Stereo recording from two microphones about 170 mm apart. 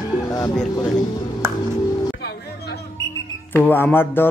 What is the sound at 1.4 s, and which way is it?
Music, 15° right (ahead or behind).